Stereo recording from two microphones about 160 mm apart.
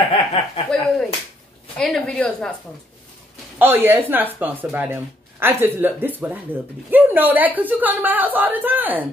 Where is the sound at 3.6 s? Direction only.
15° right (ahead or behind).